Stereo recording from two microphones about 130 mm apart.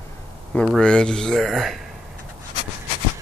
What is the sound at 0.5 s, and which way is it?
Speech, 10° left (ahead or behind).